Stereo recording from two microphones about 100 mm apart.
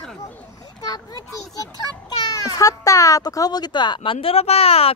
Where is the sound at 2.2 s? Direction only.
40° left (ahead or behind).